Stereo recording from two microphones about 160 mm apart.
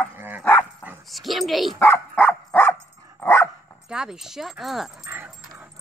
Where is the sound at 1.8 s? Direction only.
10° left (ahead or behind).